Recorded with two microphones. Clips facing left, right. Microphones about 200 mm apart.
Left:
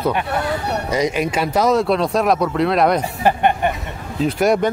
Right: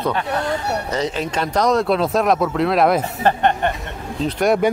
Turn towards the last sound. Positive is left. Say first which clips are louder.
# left 1 dB
turn(degrees=5)  # may be behind; listen again after turning